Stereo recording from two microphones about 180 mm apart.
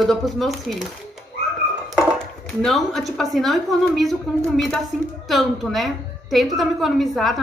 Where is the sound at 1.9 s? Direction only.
5° left (ahead or behind).